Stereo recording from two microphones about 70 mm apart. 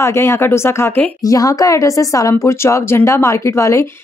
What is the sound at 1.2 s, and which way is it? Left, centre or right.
Speech, left.